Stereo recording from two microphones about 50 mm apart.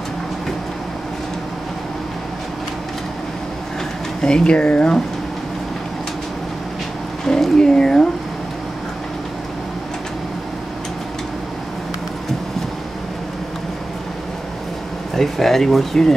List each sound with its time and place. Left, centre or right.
4.2 s speech: centre
7.2 s speech: centre
15.1 s speech: centre